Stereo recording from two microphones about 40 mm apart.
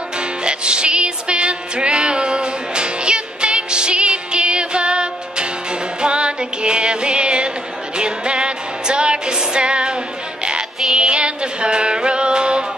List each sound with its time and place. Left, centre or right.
0.4 s music: right
11.0 s music: right